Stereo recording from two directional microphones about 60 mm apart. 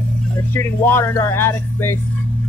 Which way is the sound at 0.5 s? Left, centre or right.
Left.